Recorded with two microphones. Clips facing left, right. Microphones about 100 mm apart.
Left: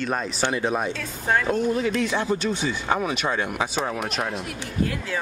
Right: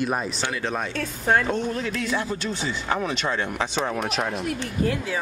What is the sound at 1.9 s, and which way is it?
Speech, 20° left (ahead or behind).